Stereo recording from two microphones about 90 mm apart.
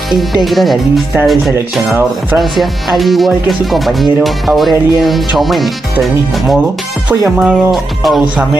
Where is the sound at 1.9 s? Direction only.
25° right (ahead or behind).